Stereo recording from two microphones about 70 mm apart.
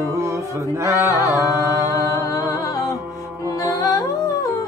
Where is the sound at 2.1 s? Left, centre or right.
Left.